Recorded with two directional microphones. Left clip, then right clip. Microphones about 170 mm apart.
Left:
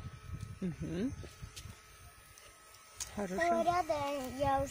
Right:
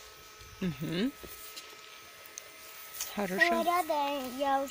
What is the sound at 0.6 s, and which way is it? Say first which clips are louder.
Speech: right 5 dB; centre (ahead or behind).